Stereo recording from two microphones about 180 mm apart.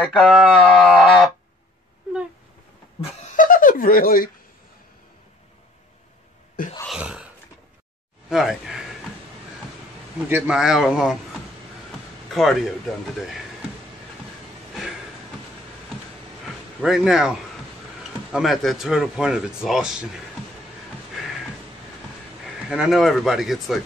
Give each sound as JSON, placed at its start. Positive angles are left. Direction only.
{"t": 0.0, "sound": "speech", "side_deg": 5}
{"t": 3.3, "sound": "giggle", "side_deg": 50}
{"t": 6.9, "sound": "a sound", "side_deg": -5}
{"t": 8.3, "sound": "speech", "side_deg": 0}
{"t": 10.1, "sound": "speech", "side_deg": -10}
{"t": 12.4, "sound": "speech", "side_deg": 0}
{"t": 16.8, "sound": "speech", "side_deg": 0}
{"t": 22.7, "sound": "speech", "side_deg": 0}